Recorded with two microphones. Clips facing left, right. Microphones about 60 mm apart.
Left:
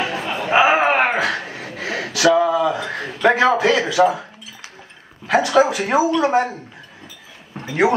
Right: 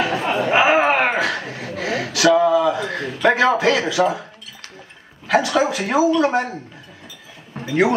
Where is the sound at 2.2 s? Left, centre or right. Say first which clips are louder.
Right 1 dB; centre.